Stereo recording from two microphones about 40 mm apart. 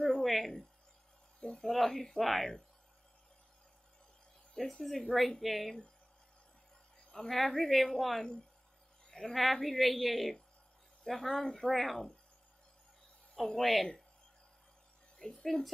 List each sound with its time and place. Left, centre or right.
0.2 s speech: centre
4.6 s speech: centre
7.1 s speech: centre
9.0 s a sound: centre
9.3 s speech: centre
13.4 s speech: centre
15.1 s music: centre